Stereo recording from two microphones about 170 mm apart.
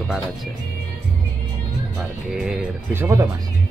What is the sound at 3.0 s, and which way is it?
Speech, 15° right (ahead or behind).